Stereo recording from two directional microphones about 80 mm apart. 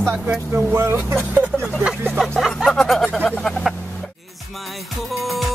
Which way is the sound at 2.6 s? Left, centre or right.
Centre.